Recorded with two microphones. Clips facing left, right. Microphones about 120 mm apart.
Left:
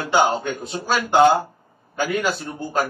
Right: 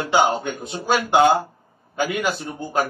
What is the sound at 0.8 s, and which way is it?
A man's voice, 15° right (ahead or behind).